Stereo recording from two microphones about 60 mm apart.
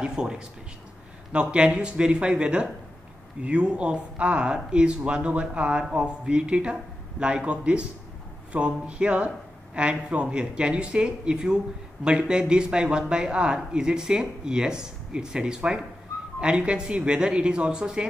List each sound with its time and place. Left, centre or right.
0.0 s speech: centre